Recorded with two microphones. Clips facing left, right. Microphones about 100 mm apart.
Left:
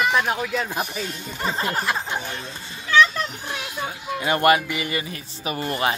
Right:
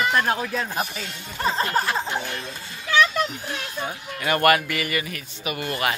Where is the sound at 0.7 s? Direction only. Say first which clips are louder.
Left 1 dB; 15° left (ahead or behind).